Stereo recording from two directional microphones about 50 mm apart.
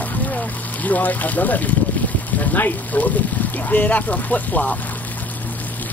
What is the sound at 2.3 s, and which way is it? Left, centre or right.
Speech, left.